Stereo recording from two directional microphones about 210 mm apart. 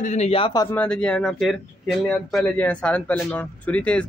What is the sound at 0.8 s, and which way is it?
Speech, 5° left (ahead or behind).